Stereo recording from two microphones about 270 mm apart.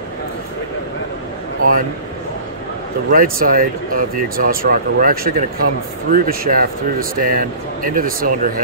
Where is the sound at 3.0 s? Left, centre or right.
Right.